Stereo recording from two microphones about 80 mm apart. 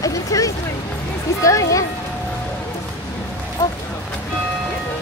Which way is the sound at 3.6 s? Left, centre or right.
Left.